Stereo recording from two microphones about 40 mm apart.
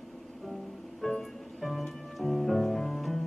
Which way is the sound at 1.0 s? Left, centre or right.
Centre.